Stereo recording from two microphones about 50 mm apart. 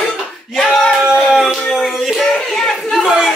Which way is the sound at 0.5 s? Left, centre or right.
Centre.